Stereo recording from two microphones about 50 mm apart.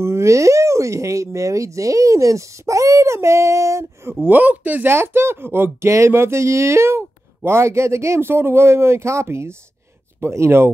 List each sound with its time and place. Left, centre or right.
0.0 s speech: right
4.1 s speech: right
4.8 s speech: right
5.9 s speech: right